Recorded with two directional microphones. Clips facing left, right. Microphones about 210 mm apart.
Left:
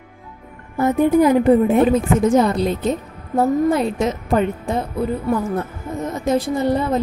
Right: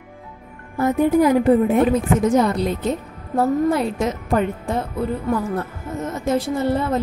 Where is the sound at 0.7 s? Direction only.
25° left (ahead or behind).